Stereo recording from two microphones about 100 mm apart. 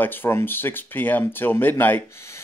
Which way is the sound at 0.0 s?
20° left (ahead or behind).